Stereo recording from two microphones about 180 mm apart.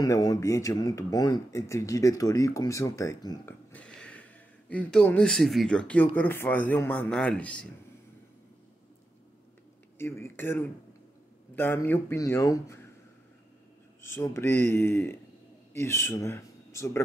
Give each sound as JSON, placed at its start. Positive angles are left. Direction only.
{"t": 0.0, "sound": "speech", "side_deg": 20}
{"t": 3.7, "sound": "speech", "side_deg": 5}
{"t": 9.9, "sound": "speech", "side_deg": 15}
{"t": 14.0, "sound": "speech", "side_deg": 15}